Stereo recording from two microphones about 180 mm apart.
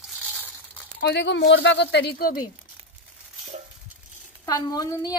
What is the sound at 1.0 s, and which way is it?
Speech, 75° left (ahead or behind).